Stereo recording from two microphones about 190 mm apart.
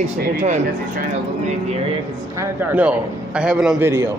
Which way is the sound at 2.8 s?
5° right (ahead or behind).